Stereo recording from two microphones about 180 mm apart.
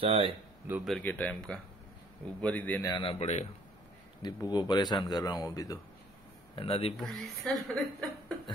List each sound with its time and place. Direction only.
0.0 s speech: 30° right (ahead or behind)
0.7 s speech: 5° right (ahead or behind)
0.9 s speech: 10° left (ahead or behind)
2.8 s a man's voice: 25° left (ahead or behind)
4.2 s speech: 20° left (ahead or behind)
6.5 s a man's voice: 30° left (ahead or behind)
7.0 s a woman's voice: centre (ahead or behind)